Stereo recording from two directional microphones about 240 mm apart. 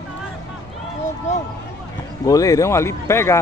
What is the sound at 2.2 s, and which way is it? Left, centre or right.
Speech, centre.